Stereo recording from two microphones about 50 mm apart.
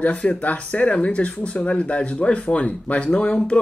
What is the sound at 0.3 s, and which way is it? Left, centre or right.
Speech, left.